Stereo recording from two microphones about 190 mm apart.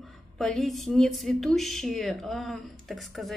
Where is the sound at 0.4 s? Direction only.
Centre (ahead or behind).